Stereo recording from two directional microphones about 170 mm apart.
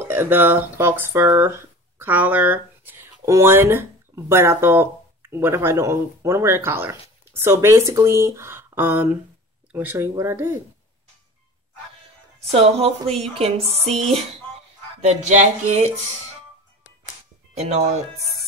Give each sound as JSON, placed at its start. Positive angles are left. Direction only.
{"t": 0.0, "sound": "speech", "side_deg": -15}
{"t": 12.4, "sound": "speech", "side_deg": -35}
{"t": 17.6, "sound": "speech", "side_deg": -40}